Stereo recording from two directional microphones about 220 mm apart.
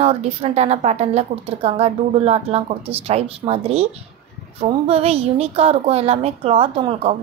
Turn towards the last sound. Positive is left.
turn(degrees=-25)  # may be behind; listen again after turning